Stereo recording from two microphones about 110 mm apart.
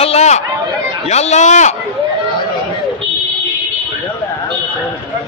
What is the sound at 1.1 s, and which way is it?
Speech, 85° left.